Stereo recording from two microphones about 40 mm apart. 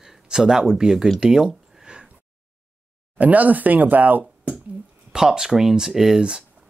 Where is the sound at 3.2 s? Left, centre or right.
Right.